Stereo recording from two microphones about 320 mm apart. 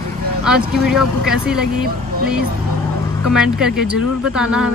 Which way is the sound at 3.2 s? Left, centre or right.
Centre.